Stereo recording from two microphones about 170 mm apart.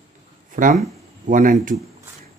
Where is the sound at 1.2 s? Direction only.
50° right (ahead or behind).